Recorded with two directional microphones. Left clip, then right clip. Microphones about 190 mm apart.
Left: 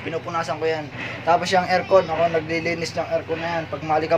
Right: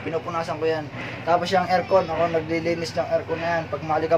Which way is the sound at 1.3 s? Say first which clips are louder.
Left 2 dB; 20° left (ahead or behind).